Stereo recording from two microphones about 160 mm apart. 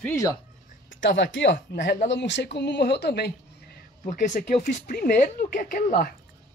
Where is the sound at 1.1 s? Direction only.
90° left; by 6.1 s 60° left (ahead or behind).